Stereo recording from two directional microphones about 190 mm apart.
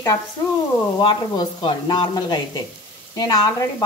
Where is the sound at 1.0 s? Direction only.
25° left (ahead or behind).